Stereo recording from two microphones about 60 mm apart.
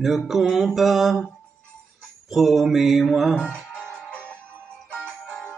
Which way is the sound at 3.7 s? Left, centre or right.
Centre.